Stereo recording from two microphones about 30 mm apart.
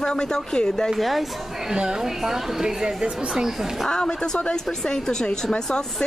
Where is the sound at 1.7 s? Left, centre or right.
Right.